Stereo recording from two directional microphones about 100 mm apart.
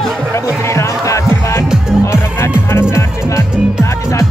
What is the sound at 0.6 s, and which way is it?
Music, 30° left (ahead or behind).